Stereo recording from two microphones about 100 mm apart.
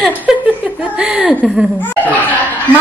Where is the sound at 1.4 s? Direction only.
Centre (ahead or behind).